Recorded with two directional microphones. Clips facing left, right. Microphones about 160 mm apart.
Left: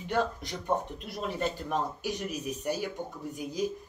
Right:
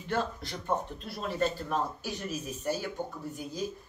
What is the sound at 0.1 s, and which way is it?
Speech, 15° left (ahead or behind).